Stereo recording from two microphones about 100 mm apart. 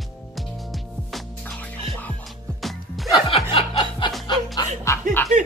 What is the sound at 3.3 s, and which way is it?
Music, 65° left (ahead or behind).